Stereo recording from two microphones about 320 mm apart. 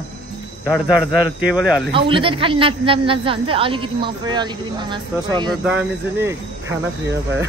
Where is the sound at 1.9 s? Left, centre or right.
Centre.